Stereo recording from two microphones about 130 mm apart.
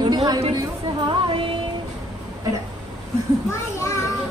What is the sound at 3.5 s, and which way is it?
Speech, 20° left (ahead or behind).